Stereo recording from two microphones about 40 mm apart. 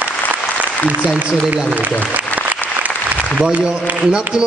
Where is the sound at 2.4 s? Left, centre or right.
Right.